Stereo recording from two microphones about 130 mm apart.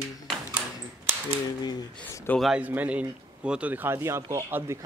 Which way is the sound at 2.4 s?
5° right (ahead or behind).